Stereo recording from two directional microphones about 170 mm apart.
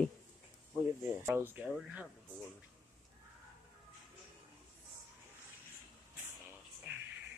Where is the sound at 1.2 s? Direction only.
10° right (ahead or behind).